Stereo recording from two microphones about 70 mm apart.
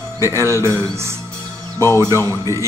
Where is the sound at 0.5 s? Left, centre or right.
Right.